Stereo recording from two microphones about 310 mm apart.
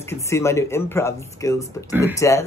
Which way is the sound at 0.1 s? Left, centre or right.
Centre.